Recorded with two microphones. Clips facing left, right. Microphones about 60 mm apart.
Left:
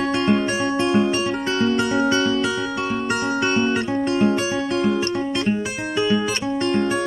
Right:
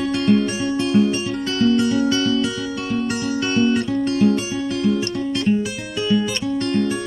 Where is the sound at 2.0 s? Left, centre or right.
Left.